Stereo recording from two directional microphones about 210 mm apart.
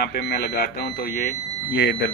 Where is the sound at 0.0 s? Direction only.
50° left (ahead or behind).